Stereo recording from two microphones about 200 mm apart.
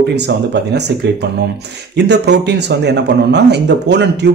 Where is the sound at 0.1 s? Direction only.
55° right (ahead or behind).